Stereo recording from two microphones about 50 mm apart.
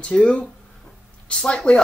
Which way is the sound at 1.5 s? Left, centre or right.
Centre.